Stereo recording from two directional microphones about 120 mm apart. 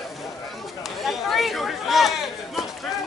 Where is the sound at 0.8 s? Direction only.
Centre (ahead or behind).